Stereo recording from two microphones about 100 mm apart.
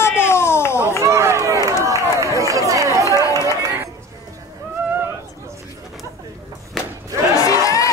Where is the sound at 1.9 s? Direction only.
30° right (ahead or behind).